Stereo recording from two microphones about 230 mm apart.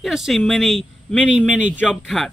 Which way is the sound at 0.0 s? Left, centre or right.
Centre.